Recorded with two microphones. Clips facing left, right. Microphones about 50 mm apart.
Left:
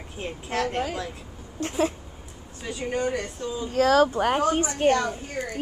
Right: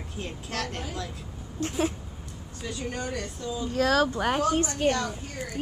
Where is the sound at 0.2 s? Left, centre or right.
Centre.